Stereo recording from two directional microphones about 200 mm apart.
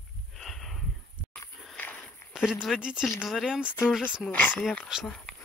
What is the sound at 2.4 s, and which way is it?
Speech, 5° right (ahead or behind).